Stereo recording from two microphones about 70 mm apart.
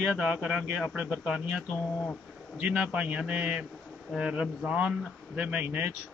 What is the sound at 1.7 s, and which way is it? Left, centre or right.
Speech, left.